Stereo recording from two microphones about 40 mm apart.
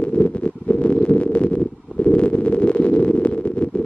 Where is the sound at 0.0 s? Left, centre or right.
Left.